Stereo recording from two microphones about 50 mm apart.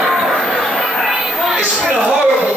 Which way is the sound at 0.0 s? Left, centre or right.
Centre.